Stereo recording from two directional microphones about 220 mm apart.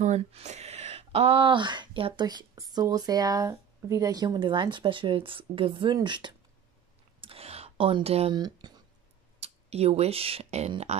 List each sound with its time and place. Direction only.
0.0 s speech: 30° right (ahead or behind)